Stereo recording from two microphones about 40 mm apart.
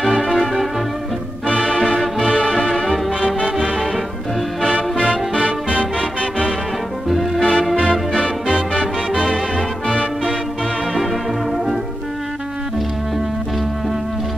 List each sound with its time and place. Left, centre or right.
0.3 s music: centre
1.9 s music: centre
3.7 s music: centre
5.9 s music: left